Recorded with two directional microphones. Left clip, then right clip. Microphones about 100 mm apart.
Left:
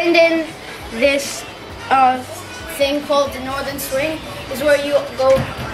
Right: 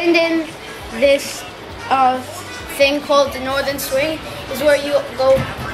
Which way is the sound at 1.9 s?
15° right (ahead or behind).